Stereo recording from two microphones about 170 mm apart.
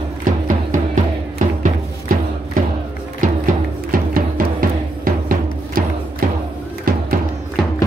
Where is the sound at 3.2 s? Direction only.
55° right (ahead or behind).